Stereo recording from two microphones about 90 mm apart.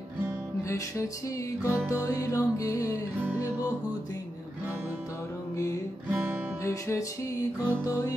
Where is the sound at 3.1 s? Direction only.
25° right (ahead or behind).